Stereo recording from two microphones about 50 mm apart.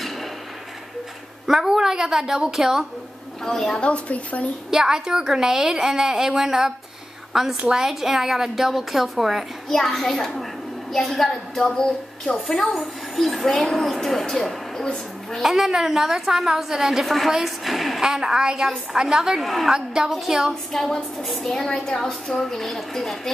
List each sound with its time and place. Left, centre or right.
1.5 s a woman's voice: centre
3.4 s a woman's voice: centre
3.7 s a woman's voice: left
4.6 s a woman's voice: centre
17.0 s a woman's voice: centre
18.0 s a woman's voice: centre
19.4 s a woman's voice: centre
19.7 s a woman's voice: centre
20.9 s a woman's voice: centre